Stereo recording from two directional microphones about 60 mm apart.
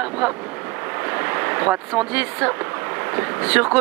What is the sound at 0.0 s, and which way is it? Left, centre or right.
Vehicle, right.